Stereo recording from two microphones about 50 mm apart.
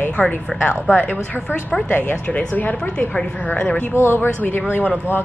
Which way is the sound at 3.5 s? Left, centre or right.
Left.